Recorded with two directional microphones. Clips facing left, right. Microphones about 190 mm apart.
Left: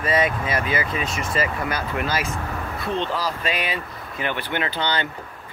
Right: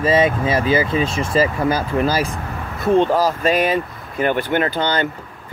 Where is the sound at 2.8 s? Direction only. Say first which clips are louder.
Right 11 dB; 45° right (ahead or behind).